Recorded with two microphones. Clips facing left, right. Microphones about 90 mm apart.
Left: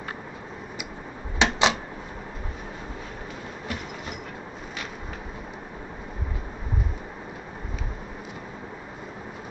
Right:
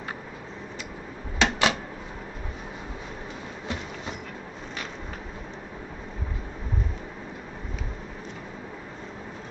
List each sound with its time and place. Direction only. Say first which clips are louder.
1.4 s typewriter: left 1 dB; 20° left (ahead or behind)